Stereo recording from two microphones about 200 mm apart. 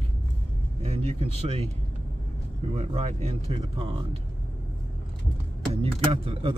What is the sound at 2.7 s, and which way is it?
Speech, 35° right (ahead or behind).